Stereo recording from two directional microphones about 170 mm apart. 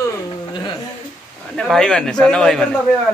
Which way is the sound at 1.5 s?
5° left (ahead or behind).